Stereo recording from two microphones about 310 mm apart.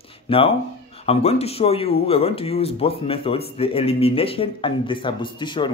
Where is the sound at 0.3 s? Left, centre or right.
Centre.